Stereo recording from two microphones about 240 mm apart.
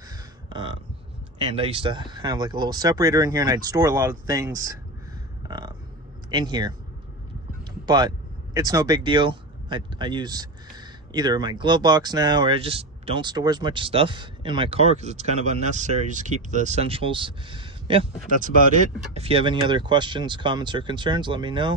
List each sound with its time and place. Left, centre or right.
0.5 s a sound: right
1.4 s speech: right
5.5 s a sound: centre
6.3 s speech: centre
7.8 s speech: centre
19.1 s speech: right